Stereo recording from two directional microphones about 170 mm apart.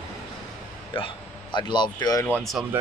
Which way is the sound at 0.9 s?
30° left (ahead or behind).